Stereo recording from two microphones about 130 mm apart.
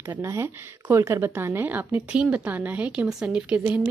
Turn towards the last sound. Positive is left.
turn(degrees=-10)  # may be behind; listen again after turning